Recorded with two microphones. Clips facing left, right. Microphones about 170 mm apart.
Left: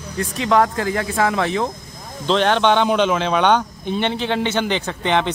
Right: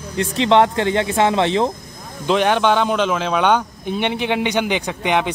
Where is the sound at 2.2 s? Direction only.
10° right (ahead or behind).